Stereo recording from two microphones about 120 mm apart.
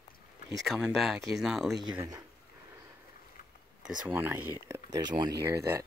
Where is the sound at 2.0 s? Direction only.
30° right (ahead or behind).